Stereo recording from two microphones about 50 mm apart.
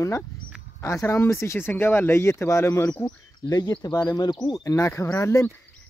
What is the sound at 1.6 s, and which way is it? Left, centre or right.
Speech, left.